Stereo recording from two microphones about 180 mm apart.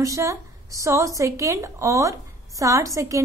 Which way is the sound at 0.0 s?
15° right (ahead or behind).